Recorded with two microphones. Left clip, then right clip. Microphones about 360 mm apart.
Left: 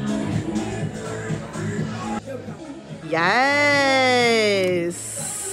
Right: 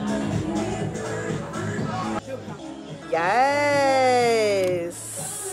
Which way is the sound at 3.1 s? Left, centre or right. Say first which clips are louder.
Left 2 dB; centre.